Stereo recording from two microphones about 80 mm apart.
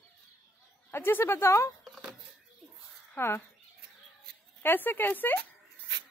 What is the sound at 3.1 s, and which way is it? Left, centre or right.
Speech, left.